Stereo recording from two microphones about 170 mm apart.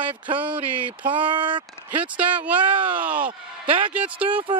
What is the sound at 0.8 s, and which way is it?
Speech, 30° right (ahead or behind).